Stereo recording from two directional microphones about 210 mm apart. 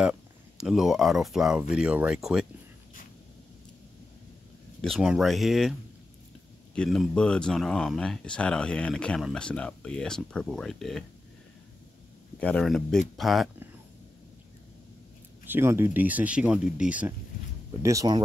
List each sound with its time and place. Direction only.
0.6 s speech: centre (ahead or behind)
4.8 s speech: centre (ahead or behind)
12.4 s speech: 5° left (ahead or behind)
15.4 s speech: 10° right (ahead or behind)
17.8 s speech: 15° right (ahead or behind)